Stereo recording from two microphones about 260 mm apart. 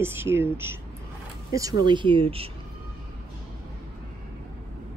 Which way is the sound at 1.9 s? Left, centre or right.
Centre.